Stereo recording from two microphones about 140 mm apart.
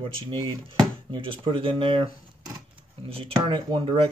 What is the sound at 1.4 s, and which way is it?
Speech, 40° right (ahead or behind).